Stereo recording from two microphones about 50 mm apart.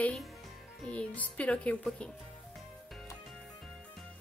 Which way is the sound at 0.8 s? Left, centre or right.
Left.